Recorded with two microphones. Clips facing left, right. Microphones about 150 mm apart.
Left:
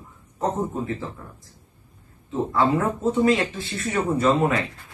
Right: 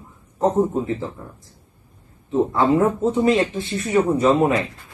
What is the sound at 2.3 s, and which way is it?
Speech, 20° right (ahead or behind).